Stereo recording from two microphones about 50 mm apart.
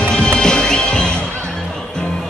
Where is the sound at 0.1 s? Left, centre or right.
Centre.